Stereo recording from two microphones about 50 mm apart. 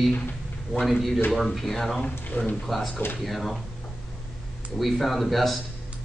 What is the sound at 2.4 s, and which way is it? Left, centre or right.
Speech, left.